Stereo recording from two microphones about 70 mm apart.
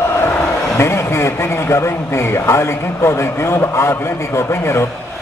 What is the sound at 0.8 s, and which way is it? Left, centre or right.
A man's voice, left.